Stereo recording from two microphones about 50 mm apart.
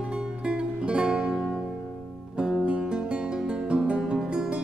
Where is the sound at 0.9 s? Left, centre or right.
Right.